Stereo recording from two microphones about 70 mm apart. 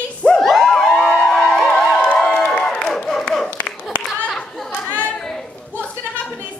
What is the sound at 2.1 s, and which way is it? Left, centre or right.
Crowd, centre.